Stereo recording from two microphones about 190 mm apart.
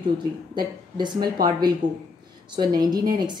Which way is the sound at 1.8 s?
40° right (ahead or behind).